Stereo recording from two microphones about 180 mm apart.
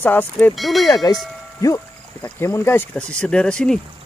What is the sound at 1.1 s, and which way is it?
Speech, 20° left (ahead or behind).